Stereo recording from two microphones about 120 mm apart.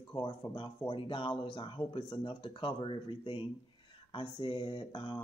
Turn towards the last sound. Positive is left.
turn(degrees=40)  # may be behind; listen again after turning